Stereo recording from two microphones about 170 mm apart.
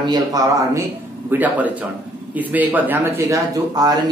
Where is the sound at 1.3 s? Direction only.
10° right (ahead or behind).